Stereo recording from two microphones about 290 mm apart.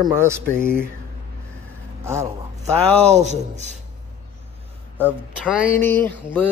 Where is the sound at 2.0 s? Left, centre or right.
Centre.